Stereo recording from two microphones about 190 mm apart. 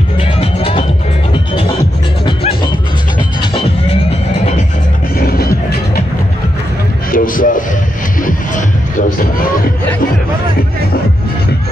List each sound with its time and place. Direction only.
0.2 s music: 30° left (ahead or behind)
2.2 s music: 25° left (ahead or behind)
5.1 s music: 55° left (ahead or behind)
7.1 s a sound: 45° left (ahead or behind)
8.2 s music: 45° left (ahead or behind)